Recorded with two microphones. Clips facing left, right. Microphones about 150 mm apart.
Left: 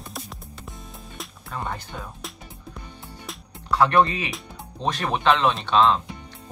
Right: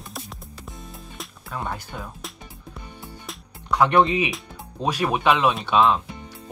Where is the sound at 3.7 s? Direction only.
15° right (ahead or behind).